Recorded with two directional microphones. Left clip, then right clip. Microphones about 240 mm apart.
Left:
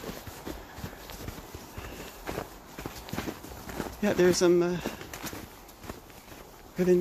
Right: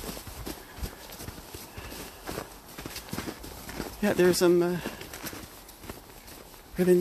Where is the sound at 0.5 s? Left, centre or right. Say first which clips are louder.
Right 1 dB; right.